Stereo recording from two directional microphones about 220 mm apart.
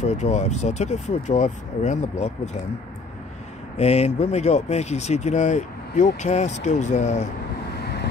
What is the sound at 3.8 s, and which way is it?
Speech, 30° left (ahead or behind).